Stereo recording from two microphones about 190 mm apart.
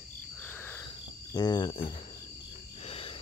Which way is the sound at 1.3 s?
20° left (ahead or behind).